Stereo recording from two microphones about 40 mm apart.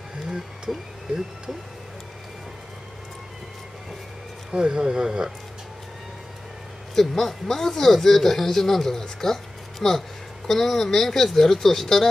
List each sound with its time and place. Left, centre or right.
4.6 s speech: right
7.0 s speech: centre